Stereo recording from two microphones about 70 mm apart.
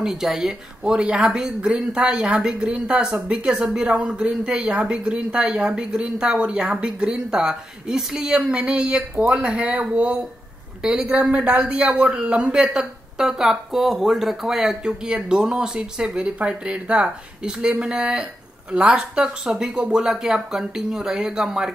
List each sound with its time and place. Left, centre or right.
0.0 s speech: centre
12.7 s speech: centre